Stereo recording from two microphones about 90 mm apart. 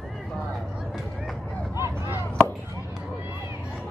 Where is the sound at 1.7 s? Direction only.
30° right (ahead or behind).